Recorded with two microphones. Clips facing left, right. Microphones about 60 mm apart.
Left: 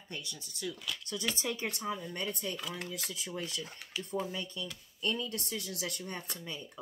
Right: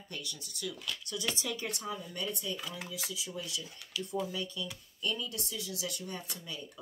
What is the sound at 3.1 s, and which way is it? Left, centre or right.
Speech, left.